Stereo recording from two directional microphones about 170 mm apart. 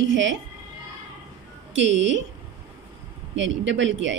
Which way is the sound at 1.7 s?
90° right.